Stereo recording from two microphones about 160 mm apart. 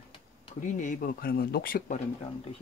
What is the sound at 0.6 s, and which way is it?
Speech, 50° left (ahead or behind).